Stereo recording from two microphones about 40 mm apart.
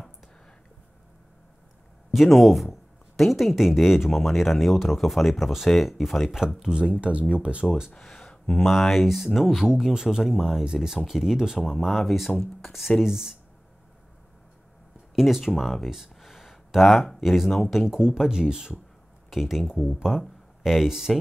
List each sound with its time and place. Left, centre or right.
2.1 s speech: centre
6.6 s speech: centre
6.9 s speech: right
8.0 s speech: centre
9.7 s speech: centre
11.7 s speech: centre
13.0 s speech: centre
15.1 s speech: centre
17.6 s speech: centre
19.3 s speech: centre
20.2 s speech: centre